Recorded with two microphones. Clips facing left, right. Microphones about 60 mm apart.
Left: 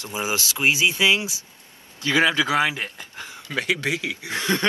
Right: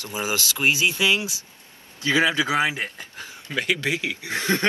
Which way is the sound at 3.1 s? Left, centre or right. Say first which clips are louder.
Left 2 dB; left.